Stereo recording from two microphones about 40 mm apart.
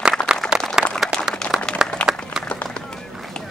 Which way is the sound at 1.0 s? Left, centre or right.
Centre.